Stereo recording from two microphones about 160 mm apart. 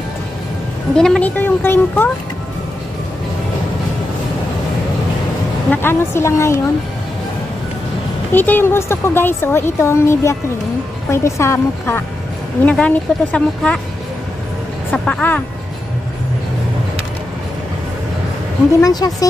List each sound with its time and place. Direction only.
0.9 s a woman's voice: 5° left (ahead or behind)
5.7 s a woman's voice: 15° left (ahead or behind)
8.3 s a woman's voice: 10° left (ahead or behind)
14.9 s speech: 10° left (ahead or behind)
18.8 s speech: 25° left (ahead or behind)